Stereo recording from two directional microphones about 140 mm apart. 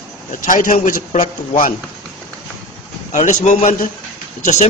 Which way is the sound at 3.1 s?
55° left (ahead or behind).